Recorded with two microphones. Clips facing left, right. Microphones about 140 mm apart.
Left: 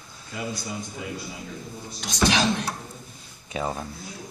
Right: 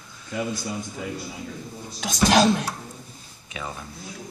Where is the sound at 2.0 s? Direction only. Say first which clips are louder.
Right 4 dB; 45° right (ahead or behind).